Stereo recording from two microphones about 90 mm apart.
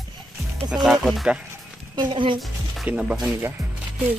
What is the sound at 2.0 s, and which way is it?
Speech, 65° right (ahead or behind).